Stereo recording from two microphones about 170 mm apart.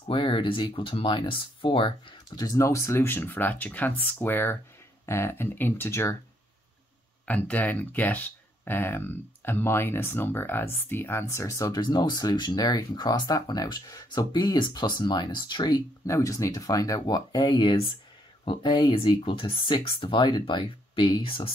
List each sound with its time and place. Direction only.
0.1 s speech: 30° left (ahead or behind)
7.2 s speech: 10° left (ahead or behind); by 21.5 s 30° left (ahead or behind)